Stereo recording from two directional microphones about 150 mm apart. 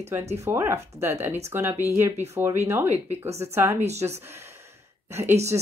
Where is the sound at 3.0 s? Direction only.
45° right (ahead or behind).